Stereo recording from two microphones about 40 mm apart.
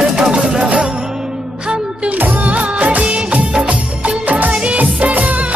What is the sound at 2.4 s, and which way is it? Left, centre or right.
Music of bollywood, right.